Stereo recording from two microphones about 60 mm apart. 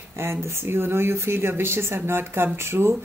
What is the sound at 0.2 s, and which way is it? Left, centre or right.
Speech, right.